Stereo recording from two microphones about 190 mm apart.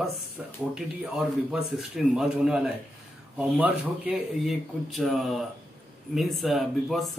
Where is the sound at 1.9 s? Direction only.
Centre (ahead or behind).